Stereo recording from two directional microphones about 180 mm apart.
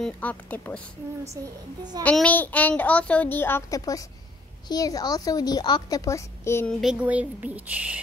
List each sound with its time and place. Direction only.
0.0 s a child's voice: 10° left (ahead or behind)
1.3 s speech: 20° right (ahead or behind)
2.0 s a child's voice: 10° left (ahead or behind)
6.7 s speech: centre (ahead or behind)